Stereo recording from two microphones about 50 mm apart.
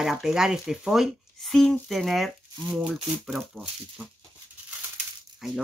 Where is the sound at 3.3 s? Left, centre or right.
Centre.